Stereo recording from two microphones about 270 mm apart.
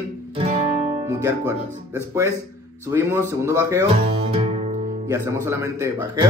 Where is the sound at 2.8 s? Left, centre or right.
Centre.